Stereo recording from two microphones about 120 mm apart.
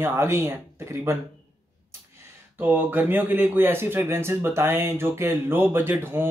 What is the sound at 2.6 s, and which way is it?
A man's voice, 15° right (ahead or behind).